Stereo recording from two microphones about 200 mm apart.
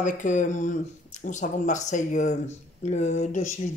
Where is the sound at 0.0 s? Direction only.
40° left (ahead or behind).